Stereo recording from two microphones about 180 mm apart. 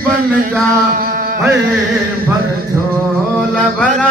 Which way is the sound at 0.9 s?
50° right (ahead or behind).